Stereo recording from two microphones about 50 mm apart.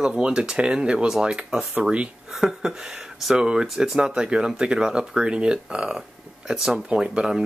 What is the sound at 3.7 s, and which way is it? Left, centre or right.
Speech, centre.